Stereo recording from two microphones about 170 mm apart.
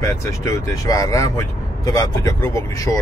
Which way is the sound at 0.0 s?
15° left (ahead or behind).